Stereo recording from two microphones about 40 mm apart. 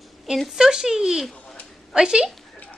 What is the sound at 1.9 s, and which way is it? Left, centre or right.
Speech, centre.